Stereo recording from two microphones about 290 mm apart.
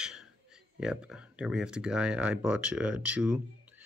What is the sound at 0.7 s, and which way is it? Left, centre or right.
Speech, centre.